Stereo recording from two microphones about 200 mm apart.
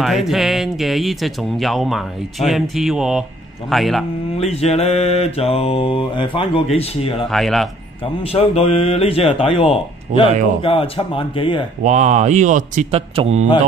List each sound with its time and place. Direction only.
0.0 s speech: centre (ahead or behind)
4.4 s mantra: 30° left (ahead or behind)
7.2 s speech: centre (ahead or behind)
8.0 s mantra: 30° left (ahead or behind)
11.8 s speech: 35° right (ahead or behind)